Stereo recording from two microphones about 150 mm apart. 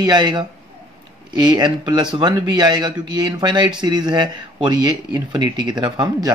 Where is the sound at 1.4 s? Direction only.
30° right (ahead or behind).